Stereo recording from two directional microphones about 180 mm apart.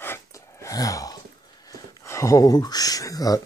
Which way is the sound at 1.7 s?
15° left (ahead or behind).